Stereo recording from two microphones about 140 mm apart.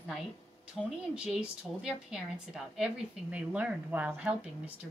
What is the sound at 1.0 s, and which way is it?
A woman's voice, 5° right (ahead or behind).